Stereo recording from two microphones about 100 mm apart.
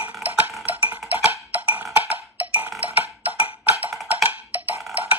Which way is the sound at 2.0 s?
15° right (ahead or behind).